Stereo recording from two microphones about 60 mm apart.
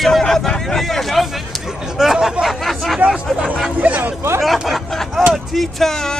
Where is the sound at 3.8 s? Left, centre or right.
Right.